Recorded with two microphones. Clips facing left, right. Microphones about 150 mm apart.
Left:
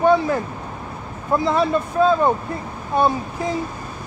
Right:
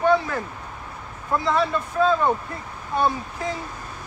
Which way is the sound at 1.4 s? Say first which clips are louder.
Left 3 dB; 15° left (ahead or behind).